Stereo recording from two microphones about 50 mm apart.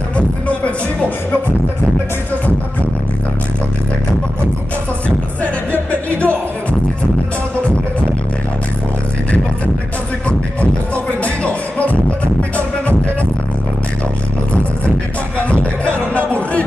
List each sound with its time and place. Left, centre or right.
5.9 s music: left
11.2 s music: left
15.3 s music: left